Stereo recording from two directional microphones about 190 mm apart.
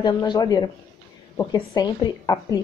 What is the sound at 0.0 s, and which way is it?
A woman's voice, 25° left (ahead or behind).